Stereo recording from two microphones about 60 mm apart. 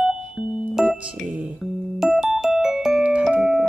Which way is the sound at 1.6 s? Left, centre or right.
Centre.